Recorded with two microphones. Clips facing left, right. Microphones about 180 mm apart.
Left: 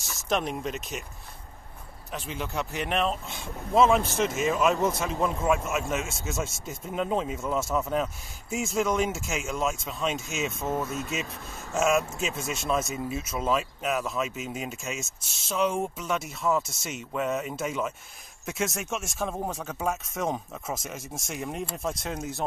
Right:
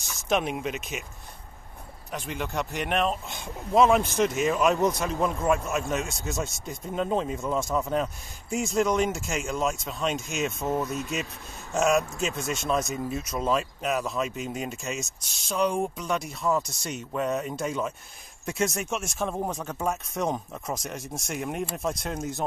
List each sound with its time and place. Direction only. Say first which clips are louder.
0.0 s speech: right 2 dB; centre (ahead or behind)
2.1 s speech: right 1 dB; centre (ahead or behind)